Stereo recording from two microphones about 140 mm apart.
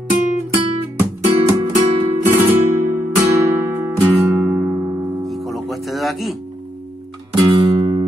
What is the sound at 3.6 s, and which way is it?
Music, 20° right (ahead or behind).